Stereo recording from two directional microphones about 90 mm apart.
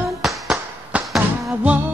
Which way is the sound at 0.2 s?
5° right (ahead or behind).